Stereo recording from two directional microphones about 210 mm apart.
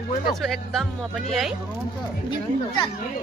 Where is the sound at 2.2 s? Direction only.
20° left (ahead or behind).